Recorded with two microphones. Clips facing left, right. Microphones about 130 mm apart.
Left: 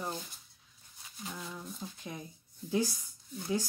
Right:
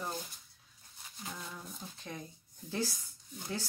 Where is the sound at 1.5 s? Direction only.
10° left (ahead or behind).